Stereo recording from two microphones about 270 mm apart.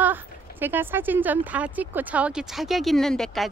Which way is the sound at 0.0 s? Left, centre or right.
Centre.